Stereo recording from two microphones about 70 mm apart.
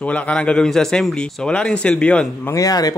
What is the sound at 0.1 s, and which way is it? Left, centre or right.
Speech, centre.